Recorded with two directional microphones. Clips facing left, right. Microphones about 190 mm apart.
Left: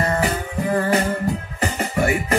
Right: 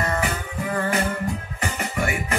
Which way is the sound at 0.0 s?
35° left (ahead or behind).